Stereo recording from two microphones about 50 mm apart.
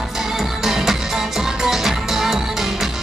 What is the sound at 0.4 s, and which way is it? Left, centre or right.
Music, centre.